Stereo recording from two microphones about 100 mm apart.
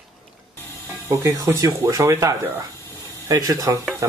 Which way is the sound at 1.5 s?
35° right (ahead or behind).